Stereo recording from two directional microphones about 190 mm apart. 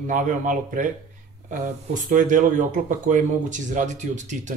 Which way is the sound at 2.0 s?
40° right (ahead or behind).